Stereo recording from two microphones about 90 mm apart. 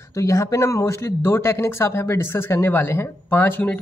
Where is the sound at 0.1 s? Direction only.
35° left (ahead or behind).